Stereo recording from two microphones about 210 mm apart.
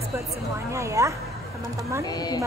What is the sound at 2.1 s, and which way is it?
Speech, 20° left (ahead or behind).